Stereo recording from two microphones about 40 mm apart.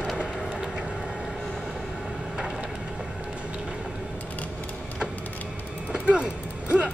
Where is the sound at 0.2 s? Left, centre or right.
Right.